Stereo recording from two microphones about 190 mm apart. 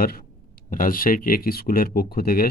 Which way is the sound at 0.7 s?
45° left (ahead or behind).